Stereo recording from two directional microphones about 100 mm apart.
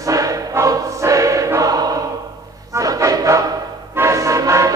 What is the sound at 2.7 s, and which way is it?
Music, 35° right (ahead or behind).